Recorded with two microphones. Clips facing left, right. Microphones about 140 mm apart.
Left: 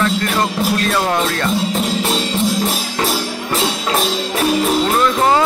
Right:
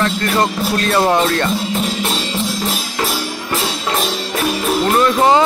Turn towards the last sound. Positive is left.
turn(degrees=-20)  # may be behind; listen again after turning